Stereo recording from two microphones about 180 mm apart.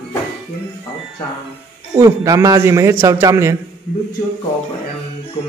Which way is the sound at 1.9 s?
20° right (ahead or behind).